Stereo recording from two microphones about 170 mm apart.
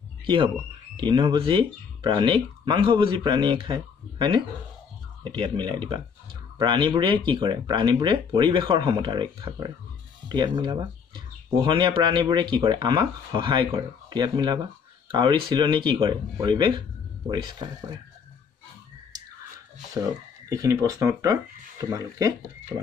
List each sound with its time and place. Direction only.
0.9 s speech: 25° right (ahead or behind)
20.4 s speech: 20° right (ahead or behind)